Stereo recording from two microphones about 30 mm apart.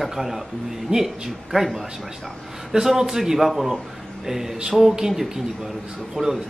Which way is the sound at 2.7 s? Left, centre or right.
Centre.